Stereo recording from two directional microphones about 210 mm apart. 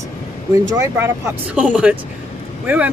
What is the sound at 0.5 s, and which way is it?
Speech, 15° right (ahead or behind).